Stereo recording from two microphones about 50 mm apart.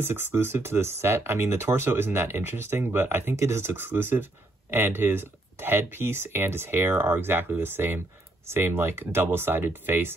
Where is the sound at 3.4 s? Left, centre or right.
Right.